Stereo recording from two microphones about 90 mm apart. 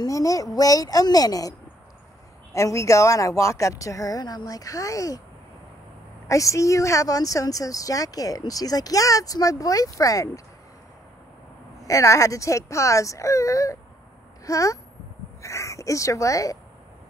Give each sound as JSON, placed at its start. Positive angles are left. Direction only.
{"t": 0.0, "sound": "speech", "side_deg": 40}
{"t": 2.5, "sound": "speech", "side_deg": 35}
{"t": 6.2, "sound": "speech", "side_deg": 35}
{"t": 11.8, "sound": "speech", "side_deg": 40}